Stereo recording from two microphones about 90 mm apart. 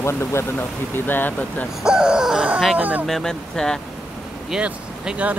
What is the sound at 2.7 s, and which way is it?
Speech, 20° right (ahead or behind).